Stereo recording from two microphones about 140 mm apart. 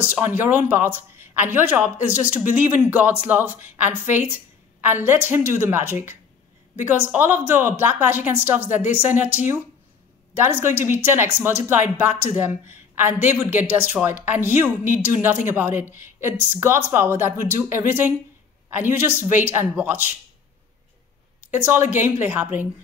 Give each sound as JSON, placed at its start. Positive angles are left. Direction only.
{"t": 0.0, "sound": "speech", "side_deg": -10}
{"t": 21.5, "sound": "speech", "side_deg": -15}